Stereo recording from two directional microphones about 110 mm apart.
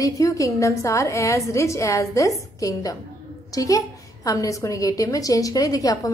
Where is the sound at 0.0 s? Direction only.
30° left (ahead or behind).